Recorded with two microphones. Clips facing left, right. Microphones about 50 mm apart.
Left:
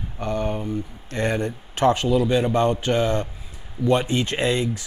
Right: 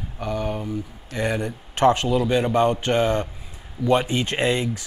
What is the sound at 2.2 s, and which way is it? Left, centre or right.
Speech, centre.